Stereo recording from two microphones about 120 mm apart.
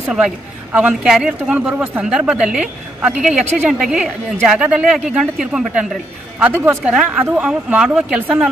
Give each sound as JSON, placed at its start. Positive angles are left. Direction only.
{"t": 0.7, "sound": "speech", "side_deg": -5}
{"t": 6.4, "sound": "speech", "side_deg": -20}
{"t": 6.8, "sound": "speech", "side_deg": -10}